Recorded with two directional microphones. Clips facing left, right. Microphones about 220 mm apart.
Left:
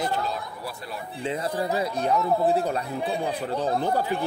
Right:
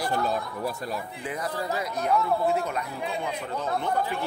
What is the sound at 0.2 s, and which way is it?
Speech, 50° right (ahead or behind).